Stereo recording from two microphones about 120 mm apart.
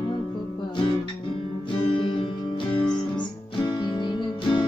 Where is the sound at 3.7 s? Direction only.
40° left (ahead or behind).